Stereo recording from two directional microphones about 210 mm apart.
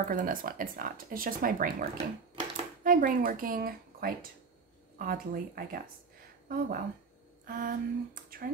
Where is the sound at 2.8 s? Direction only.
40° right (ahead or behind).